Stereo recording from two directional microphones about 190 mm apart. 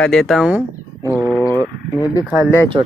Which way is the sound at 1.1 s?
5° right (ahead or behind).